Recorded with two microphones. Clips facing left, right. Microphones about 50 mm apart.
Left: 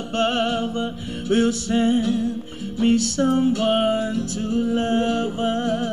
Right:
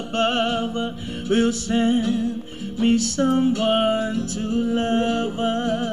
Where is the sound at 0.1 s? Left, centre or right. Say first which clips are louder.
Even; right.